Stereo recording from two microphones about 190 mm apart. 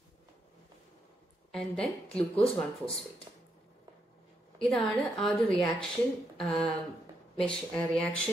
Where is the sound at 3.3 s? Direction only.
20° right (ahead or behind).